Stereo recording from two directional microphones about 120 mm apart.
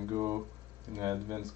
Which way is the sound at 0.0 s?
25° right (ahead or behind).